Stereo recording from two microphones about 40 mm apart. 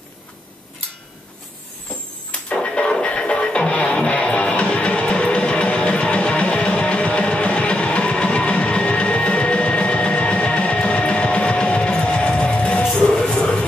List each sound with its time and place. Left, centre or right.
2.3 s music: left